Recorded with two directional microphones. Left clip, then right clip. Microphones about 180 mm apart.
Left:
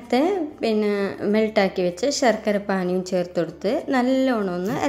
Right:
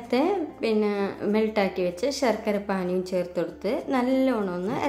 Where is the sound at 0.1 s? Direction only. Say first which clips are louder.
Left 3 dB; 25° left (ahead or behind).